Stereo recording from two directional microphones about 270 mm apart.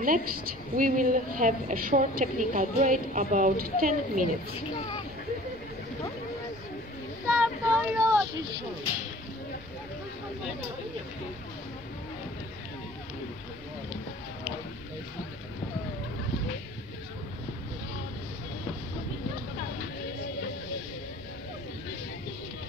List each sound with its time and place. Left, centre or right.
0.0 s a woman's voice: right
7.2 s child singing: centre